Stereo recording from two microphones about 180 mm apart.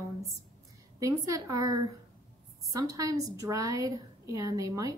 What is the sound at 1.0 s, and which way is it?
A woman's voice, 20° right (ahead or behind).